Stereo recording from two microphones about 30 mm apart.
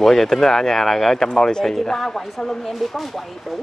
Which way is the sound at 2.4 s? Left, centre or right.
Centre.